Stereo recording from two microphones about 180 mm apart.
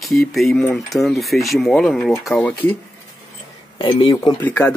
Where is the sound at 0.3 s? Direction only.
Centre (ahead or behind).